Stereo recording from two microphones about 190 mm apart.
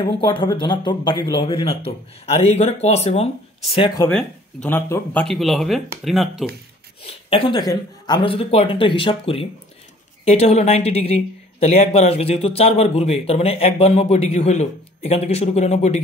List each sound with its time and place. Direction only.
0.0 s a woman's voice: 25° left (ahead or behind)
3.7 s speech: 25° left (ahead or behind)
4.1 s speech: 5° left (ahead or behind)
5.3 s speech: centre (ahead or behind)
7.2 s a woman's voice: 25° left (ahead or behind)